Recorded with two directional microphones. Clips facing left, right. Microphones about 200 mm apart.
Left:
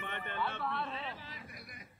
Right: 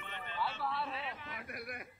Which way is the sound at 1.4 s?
60° right (ahead or behind).